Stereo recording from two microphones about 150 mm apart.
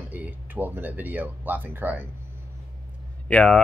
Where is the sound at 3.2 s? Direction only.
10° left (ahead or behind).